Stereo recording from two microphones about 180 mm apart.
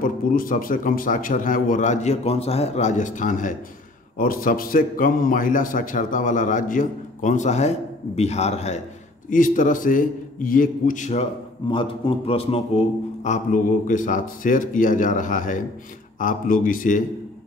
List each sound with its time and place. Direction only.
0.0 s a man's voice: 50° left (ahead or behind)
11.7 s a man's voice: 30° left (ahead or behind); by 17.0 s 50° left (ahead or behind)